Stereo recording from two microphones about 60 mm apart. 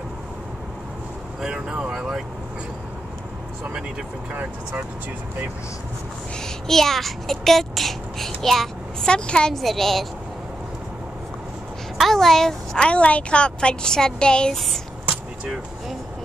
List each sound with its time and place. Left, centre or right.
1.4 s speech: centre
4.3 s speech: right
6.4 s a child's voice: centre
9.6 s a woman's voice: centre
12.0 s a child's voice: centre
12.7 s a woman's voice: centre